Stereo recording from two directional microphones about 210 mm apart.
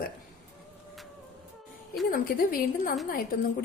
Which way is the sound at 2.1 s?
40° left (ahead or behind).